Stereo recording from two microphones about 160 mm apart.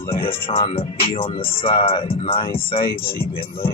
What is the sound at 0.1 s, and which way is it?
Speech, 35° left (ahead or behind).